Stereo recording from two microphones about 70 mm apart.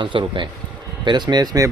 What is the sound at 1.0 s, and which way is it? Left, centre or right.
Speech, right.